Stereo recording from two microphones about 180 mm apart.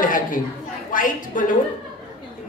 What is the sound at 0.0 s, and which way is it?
Chatter, 50° left (ahead or behind).